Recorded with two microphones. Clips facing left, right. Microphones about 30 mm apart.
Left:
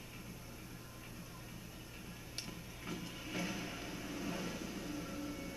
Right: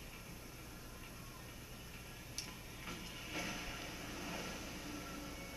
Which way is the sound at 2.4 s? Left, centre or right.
Centre.